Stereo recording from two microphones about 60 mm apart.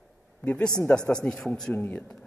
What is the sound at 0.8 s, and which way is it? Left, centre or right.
Speech, left.